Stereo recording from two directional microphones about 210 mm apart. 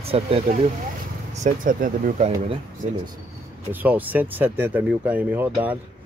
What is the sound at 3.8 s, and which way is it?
Speech, 10° right (ahead or behind).